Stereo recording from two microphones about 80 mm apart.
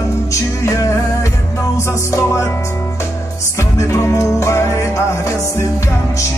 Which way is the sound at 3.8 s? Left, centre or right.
Left.